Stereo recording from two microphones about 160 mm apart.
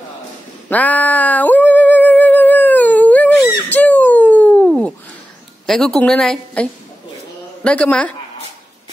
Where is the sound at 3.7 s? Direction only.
10° left (ahead or behind).